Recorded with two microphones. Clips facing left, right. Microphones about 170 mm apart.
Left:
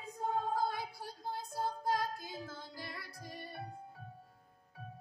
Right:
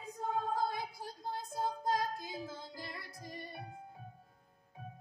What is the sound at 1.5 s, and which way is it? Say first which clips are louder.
Music: right 1 dB; 20° right (ahead or behind).